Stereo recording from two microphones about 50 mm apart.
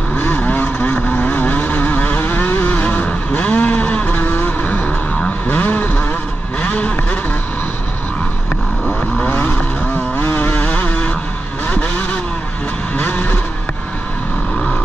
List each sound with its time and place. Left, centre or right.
0.4 s vehicle: left
10.1 s vehicle: left
10.5 s vehicle: left
13.0 s vehicle: left